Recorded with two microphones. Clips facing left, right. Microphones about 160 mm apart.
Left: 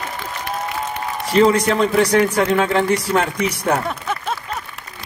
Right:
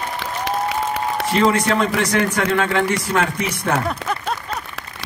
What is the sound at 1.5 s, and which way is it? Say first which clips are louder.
Speech: left 3 dB; 35° left (ahead or behind).